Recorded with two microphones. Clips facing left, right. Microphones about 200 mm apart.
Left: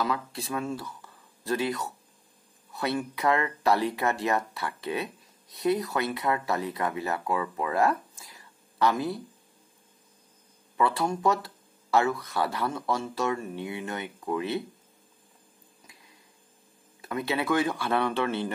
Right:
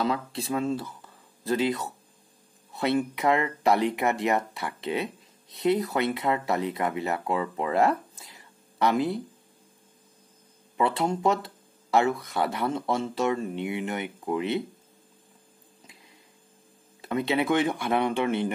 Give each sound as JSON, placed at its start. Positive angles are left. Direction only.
{"t": 0.0, "sound": "speech", "side_deg": -25}
{"t": 10.8, "sound": "speech", "side_deg": -20}
{"t": 17.0, "sound": "speech", "side_deg": -25}